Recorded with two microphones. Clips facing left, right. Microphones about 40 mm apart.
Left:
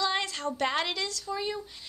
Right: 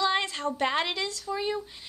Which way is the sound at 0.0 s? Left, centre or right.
Right.